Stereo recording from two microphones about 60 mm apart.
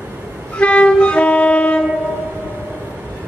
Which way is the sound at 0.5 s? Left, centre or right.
Left.